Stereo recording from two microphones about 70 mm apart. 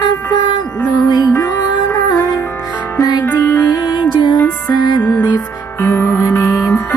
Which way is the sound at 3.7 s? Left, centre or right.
Left.